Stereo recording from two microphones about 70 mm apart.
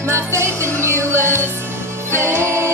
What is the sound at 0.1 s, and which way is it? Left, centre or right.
Music, right.